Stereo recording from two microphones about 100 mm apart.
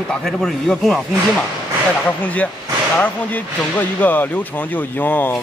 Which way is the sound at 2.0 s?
15° left (ahead or behind).